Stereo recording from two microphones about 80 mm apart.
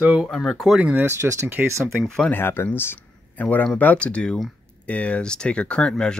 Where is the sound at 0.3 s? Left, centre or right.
Centre.